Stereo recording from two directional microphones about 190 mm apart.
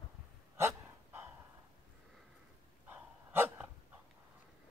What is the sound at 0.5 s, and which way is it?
Dog, 15° right (ahead or behind).